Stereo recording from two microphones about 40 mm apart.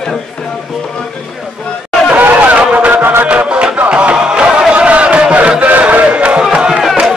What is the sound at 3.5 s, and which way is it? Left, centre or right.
Music, right.